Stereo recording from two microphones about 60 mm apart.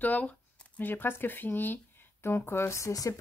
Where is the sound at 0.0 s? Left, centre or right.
Left.